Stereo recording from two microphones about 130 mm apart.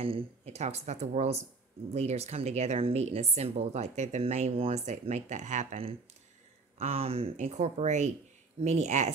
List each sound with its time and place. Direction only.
0.0 s a woman's voice: 45° right (ahead or behind); by 5.8 s 70° right (ahead or behind)
6.8 s speech: 50° right (ahead or behind)
7.3 s a woman's voice: 60° right (ahead or behind)